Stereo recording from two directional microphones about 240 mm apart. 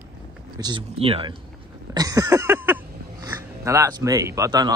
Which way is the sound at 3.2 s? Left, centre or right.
Centre.